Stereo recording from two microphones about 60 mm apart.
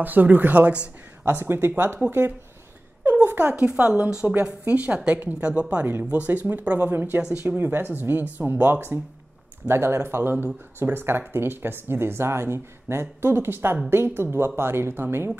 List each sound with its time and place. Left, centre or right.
0.0 s speech: right
1.2 s speech: right